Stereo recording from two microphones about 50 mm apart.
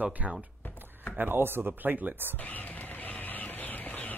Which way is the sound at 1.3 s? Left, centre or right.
Right.